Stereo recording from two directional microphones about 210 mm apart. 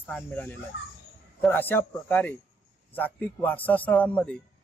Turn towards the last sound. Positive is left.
turn(degrees=5)  # may be behind; listen again after turning